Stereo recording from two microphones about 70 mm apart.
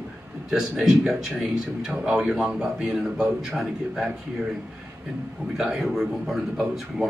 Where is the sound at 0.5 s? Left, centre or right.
Centre.